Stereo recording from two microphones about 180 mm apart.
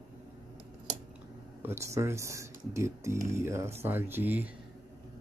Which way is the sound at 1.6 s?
15° right (ahead or behind).